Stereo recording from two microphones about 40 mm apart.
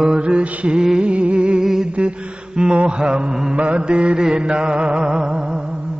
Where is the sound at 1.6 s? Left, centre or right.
Centre.